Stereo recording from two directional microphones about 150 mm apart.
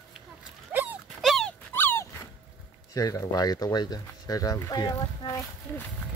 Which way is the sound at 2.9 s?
25° left (ahead or behind).